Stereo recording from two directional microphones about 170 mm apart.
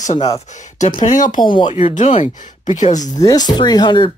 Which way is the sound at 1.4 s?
25° left (ahead or behind).